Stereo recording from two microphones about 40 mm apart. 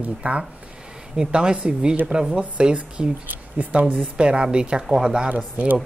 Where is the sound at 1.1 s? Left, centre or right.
Right.